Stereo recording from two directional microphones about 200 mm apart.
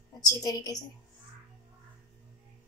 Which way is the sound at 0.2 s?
15° left (ahead or behind).